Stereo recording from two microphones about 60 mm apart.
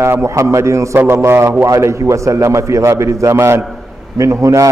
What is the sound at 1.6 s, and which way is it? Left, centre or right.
A man's voice, right.